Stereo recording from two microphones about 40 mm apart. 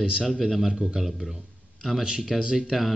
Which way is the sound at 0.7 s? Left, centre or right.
Centre.